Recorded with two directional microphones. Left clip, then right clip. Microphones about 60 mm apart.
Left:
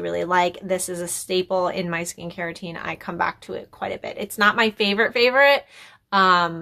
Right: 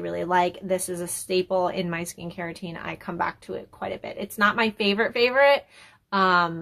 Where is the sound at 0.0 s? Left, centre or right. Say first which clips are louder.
Left 3 dB; left.